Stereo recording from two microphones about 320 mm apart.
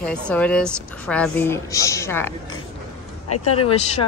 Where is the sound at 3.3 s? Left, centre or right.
Left.